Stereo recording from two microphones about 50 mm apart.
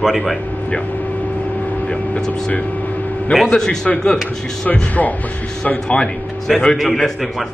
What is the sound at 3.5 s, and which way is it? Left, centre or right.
Speech, centre.